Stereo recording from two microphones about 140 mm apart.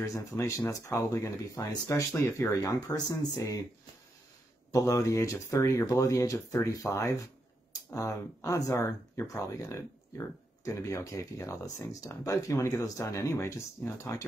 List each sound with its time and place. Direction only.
0.0 s speech: 25° left (ahead or behind)
4.7 s speech: 25° left (ahead or behind)